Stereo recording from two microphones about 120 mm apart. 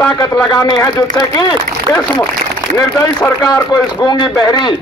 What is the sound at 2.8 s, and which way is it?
A man's voice, 30° left (ahead or behind).